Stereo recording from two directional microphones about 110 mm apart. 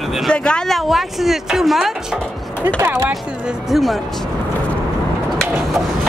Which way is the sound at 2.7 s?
20° right (ahead or behind).